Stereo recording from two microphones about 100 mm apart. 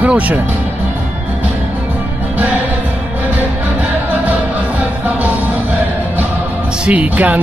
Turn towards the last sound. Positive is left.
turn(degrees=-15)  # may be behind; listen again after turning